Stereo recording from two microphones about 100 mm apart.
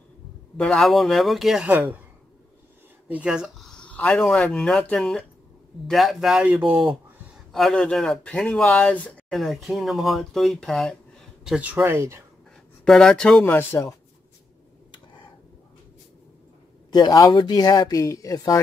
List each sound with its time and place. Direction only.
0.6 s speech: 5° left (ahead or behind)
1.7 s speech: 15° right (ahead or behind)
3.1 s speech: 10° right (ahead or behind)
7.5 s speech: 5° left (ahead or behind)
9.3 s speech: centre (ahead or behind)
11.5 s speech: 15° right (ahead or behind)
11.8 s speech: 25° right (ahead or behind)
12.8 s speech: 5° left (ahead or behind)
13.5 s speech: 25° left (ahead or behind)
16.9 s speech: 40° left (ahead or behind)